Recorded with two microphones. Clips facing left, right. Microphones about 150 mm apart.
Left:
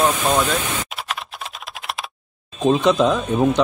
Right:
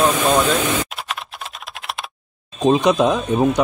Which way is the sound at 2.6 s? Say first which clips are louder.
Right 1 dB; 15° right (ahead or behind).